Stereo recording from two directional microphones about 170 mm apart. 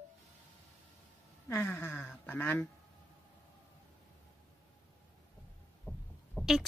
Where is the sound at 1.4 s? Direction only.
15° left (ahead or behind).